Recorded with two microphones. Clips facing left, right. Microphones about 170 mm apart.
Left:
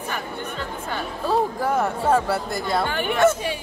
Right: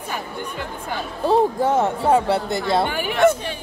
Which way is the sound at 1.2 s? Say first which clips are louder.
Right 5 dB; 25° right (ahead or behind).